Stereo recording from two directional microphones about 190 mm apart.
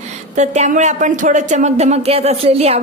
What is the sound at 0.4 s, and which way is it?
A woman's voice, 40° right (ahead or behind).